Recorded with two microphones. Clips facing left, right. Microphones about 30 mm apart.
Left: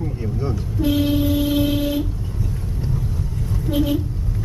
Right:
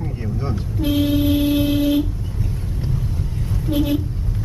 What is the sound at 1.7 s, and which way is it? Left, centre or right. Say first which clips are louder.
Vehicle: right 3 dB; centre.